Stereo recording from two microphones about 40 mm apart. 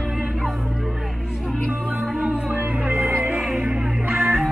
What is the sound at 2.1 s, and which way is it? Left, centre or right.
Music, right.